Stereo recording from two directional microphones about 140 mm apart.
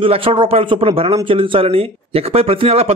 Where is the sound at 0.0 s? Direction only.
40° right (ahead or behind).